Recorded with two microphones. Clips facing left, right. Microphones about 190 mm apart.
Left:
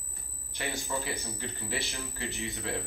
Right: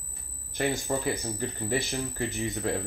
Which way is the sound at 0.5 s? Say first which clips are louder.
Right 7 dB; 55° right (ahead or behind).